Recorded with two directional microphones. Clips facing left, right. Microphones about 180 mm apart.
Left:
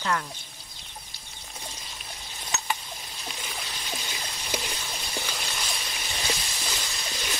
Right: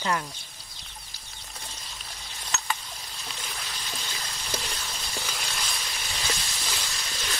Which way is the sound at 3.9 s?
15° left (ahead or behind).